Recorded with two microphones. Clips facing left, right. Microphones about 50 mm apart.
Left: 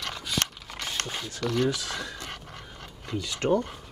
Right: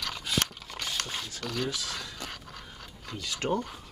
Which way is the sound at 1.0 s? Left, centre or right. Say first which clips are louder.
Left 2 dB; left.